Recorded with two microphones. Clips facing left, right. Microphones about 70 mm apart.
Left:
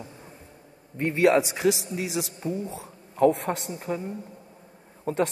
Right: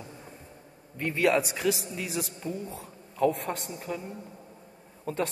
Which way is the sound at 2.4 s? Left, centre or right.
Left.